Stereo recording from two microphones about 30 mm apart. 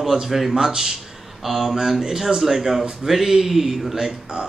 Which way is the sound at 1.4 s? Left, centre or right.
Centre.